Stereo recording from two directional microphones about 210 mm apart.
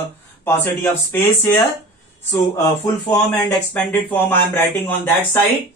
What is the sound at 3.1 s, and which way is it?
Speech, 15° left (ahead or behind).